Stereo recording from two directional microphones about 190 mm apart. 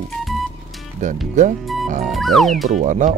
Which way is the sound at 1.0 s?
40° right (ahead or behind).